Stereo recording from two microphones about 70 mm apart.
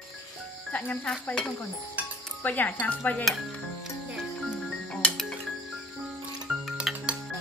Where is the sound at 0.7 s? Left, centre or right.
Left.